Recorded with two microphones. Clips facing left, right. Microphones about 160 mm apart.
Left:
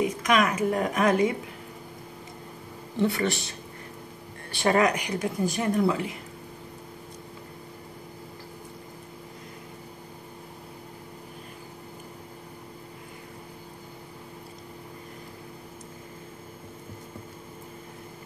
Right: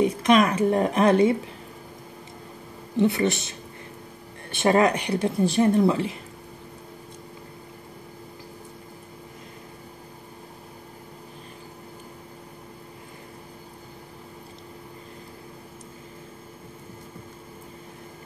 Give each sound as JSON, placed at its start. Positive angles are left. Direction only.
{"t": 0.0, "sound": "a woman's voice", "side_deg": -30}
{"t": 3.0, "sound": "speech", "side_deg": -20}